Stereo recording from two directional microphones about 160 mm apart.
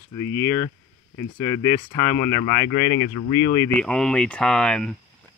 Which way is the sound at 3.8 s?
5° left (ahead or behind).